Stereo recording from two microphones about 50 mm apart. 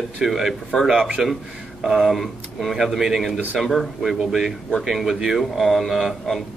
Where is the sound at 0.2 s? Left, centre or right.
Centre.